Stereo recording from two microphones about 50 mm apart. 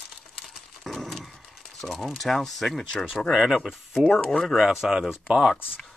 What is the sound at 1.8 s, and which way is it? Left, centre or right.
Speech, centre.